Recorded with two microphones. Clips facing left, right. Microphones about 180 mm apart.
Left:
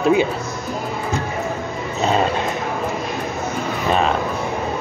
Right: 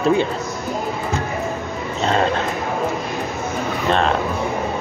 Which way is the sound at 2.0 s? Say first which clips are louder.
Left 1 dB; 10° left (ahead or behind).